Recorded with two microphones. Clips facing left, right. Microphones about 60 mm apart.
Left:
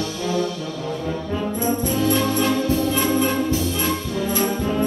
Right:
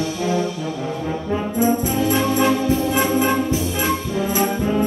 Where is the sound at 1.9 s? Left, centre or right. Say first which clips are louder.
Right 1 dB; right.